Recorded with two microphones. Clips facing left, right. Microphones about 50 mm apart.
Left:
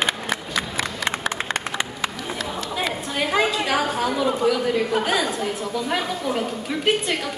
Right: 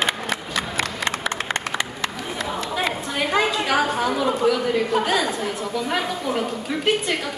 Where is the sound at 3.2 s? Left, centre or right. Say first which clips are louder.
Even; centre.